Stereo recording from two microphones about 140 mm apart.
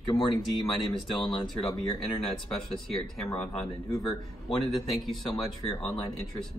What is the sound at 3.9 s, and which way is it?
Speech, 30° left (ahead or behind).